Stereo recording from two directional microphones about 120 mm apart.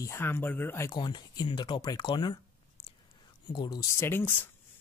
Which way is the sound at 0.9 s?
35° left (ahead or behind).